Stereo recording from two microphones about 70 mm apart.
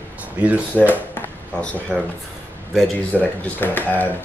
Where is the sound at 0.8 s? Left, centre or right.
Left.